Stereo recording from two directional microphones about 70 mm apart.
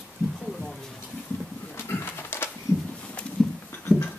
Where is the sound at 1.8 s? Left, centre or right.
Left.